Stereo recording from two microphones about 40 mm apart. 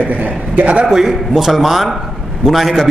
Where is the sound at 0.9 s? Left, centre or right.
Centre.